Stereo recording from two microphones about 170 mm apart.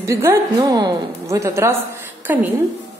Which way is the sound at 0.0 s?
15° right (ahead or behind).